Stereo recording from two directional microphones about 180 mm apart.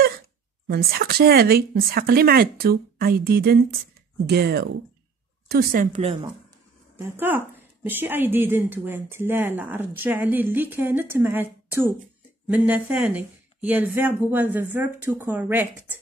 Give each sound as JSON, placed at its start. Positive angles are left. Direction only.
{"t": 0.7, "sound": "a woman's voice", "side_deg": -60}
{"t": 7.0, "sound": "a woman's voice", "side_deg": -10}